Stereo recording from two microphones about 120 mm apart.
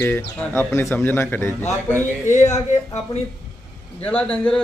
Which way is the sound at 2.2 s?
80° left.